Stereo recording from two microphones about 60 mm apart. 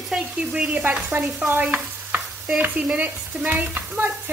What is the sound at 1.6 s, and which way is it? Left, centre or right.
Stir, right.